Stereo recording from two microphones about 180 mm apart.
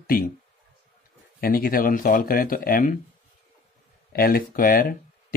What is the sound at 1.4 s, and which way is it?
Speech, 55° left (ahead or behind).